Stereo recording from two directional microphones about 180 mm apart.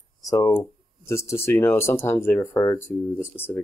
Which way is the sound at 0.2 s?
20° left (ahead or behind).